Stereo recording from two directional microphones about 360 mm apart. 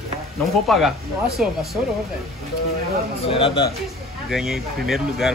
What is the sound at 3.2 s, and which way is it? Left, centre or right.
Speech, centre.